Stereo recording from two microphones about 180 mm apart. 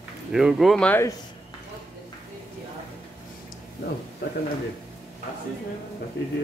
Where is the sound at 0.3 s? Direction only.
5° right (ahead or behind).